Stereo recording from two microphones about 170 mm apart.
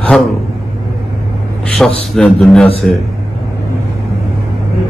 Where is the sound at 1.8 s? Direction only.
5° left (ahead or behind).